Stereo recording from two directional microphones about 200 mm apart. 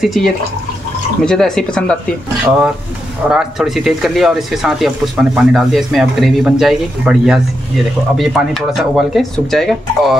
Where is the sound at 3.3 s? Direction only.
Centre (ahead or behind).